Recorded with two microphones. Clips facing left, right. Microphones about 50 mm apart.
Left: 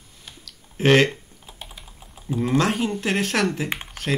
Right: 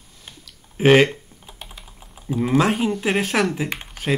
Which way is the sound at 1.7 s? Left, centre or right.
Centre.